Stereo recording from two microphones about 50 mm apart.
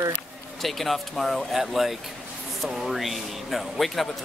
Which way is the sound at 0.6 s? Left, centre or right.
Centre.